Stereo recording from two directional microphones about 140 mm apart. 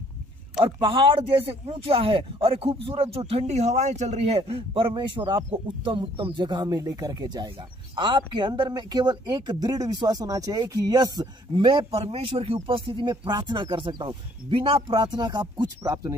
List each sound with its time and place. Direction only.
0.6 s speech: 35° right (ahead or behind)